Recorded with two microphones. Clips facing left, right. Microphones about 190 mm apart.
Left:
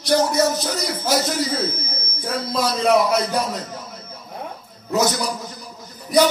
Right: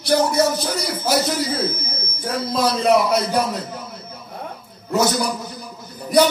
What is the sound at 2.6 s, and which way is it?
Speech, 60° right (ahead or behind).